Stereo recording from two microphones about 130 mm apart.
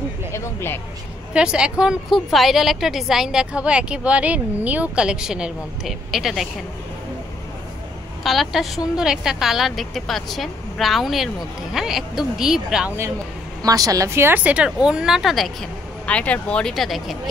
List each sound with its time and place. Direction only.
0.3 s speech: 20° left (ahead or behind)
1.3 s a woman's voice: 5° right (ahead or behind)
8.2 s a woman's voice: centre (ahead or behind)
13.6 s a woman's voice: 30° right (ahead or behind); by 17.2 s centre (ahead or behind)